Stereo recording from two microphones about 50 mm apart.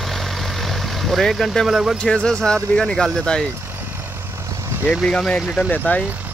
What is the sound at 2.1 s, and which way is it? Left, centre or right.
Speech, centre.